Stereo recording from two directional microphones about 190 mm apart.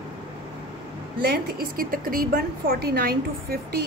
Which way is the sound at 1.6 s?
50° right (ahead or behind).